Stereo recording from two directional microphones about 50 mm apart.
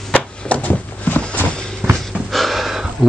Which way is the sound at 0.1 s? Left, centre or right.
Left.